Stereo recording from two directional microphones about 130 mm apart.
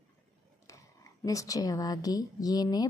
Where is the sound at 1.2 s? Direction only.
25° left (ahead or behind).